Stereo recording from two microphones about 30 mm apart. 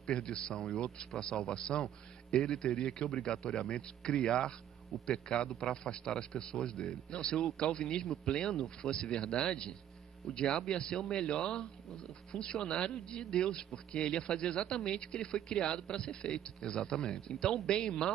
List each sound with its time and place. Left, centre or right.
0.0 s speech: left